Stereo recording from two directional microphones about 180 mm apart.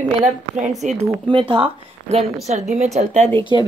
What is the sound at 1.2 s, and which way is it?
Speech, 30° right (ahead or behind).